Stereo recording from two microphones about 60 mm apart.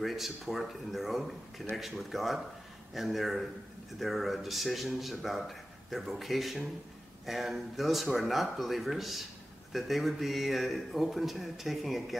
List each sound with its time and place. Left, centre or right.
0.0 s a man's voice: centre